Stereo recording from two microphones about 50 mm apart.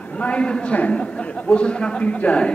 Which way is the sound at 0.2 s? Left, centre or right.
Left.